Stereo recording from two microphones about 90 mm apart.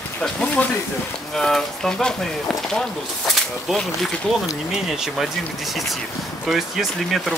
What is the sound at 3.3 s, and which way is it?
Speech, centre (ahead or behind).